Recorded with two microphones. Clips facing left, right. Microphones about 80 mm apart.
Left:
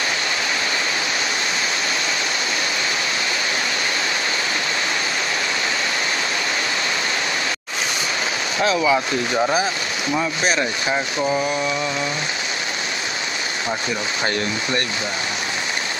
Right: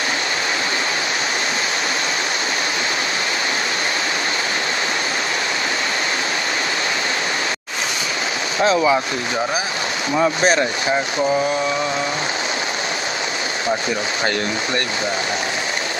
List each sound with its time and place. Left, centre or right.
8.7 s speech: centre